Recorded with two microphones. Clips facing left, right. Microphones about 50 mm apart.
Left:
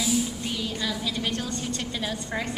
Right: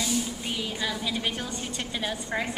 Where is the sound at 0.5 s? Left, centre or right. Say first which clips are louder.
Left 1 dB; centre.